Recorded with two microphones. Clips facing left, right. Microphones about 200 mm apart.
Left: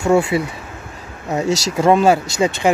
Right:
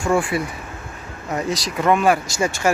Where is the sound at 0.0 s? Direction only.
25° left (ahead or behind).